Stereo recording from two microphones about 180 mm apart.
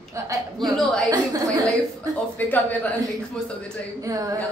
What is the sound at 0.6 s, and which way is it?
Speech, centre (ahead or behind).